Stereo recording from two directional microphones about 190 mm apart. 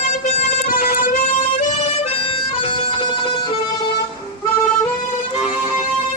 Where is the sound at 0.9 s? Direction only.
45° left (ahead or behind).